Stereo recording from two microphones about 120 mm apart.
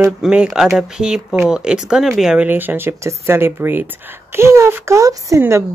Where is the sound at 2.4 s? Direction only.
15° right (ahead or behind).